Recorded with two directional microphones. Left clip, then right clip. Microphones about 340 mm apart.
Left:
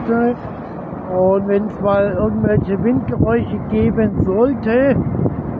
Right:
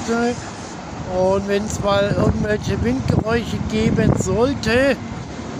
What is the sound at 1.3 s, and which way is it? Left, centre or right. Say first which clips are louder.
Speech: left 4 dB; left.